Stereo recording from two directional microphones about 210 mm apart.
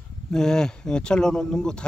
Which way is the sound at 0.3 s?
5° left (ahead or behind).